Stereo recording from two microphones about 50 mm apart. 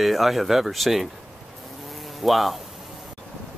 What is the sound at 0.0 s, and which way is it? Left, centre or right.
Speech, centre.